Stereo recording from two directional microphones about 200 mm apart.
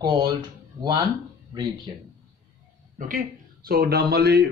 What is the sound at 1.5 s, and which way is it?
Speech, 20° right (ahead or behind).